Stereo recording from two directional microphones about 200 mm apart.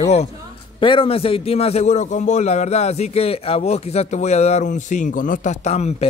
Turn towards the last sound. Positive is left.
turn(degrees=35)  # may be behind; listen again after turning